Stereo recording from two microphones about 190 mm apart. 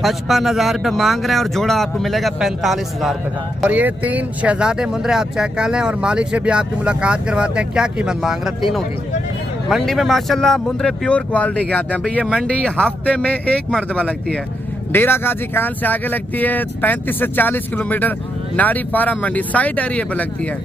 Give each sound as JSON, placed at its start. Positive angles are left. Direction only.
{"t": 0.0, "sound": "speech", "side_deg": 0}
{"t": 9.7, "sound": "speech", "side_deg": 0}